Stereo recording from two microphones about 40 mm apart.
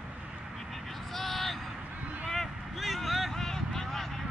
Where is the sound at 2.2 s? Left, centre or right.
Centre.